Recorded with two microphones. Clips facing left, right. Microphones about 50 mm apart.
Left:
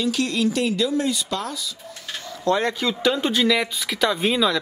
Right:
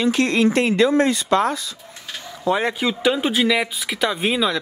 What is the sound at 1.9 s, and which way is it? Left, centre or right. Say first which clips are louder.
Speech: left 1 dB; centre.